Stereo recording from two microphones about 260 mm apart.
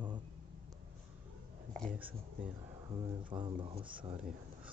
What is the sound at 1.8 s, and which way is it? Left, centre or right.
Speech, centre.